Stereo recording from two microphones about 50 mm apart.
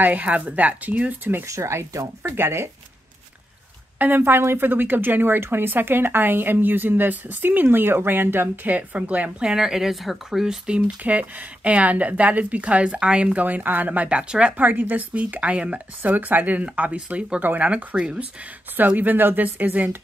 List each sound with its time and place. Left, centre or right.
0.0 s a woman's voice: right
1.4 s speech: right
4.0 s speech: right
7.6 s speech: right
8.7 s a woman's voice: right
9.4 s speech: centre
10.4 s speech: centre
11.0 s speech: right
14.6 s a woman's voice: right
16.0 s a woman's voice: right; by 18.2 s centre
18.8 s a woman's voice: right